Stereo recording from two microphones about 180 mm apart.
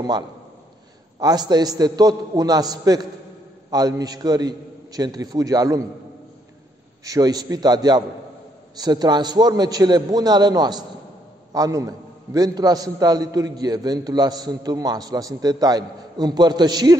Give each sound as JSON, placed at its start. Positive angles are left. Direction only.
{"t": 1.2, "sound": "a man's voice", "side_deg": -20}
{"t": 7.1, "sound": "a man's voice", "side_deg": -20}